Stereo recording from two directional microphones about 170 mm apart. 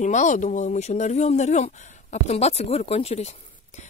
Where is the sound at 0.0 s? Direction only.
45° left (ahead or behind).